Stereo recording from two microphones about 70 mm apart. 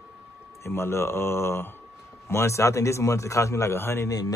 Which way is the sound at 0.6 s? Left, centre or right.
Left.